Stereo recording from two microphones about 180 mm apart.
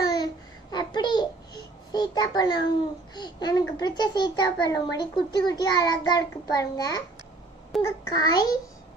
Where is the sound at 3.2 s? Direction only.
25° left (ahead or behind).